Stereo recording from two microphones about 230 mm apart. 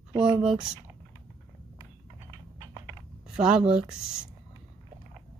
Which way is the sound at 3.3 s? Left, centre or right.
Centre.